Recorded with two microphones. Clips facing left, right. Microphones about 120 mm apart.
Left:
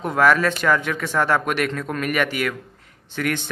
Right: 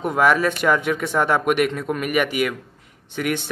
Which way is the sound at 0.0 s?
10° right (ahead or behind).